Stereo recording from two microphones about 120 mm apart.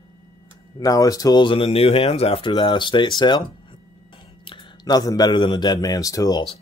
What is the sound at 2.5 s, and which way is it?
Speech, 40° left (ahead or behind).